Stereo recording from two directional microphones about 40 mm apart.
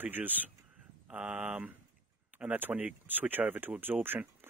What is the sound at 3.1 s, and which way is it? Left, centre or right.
Speech, right.